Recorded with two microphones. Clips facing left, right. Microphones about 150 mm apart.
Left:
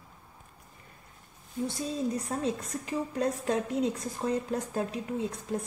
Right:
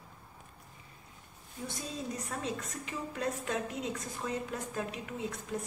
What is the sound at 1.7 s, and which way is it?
A woman's voice, 35° left (ahead or behind).